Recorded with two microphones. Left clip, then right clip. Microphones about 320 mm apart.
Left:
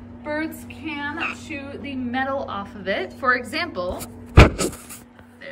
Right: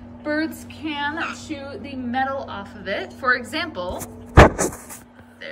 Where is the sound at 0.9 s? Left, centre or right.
Centre.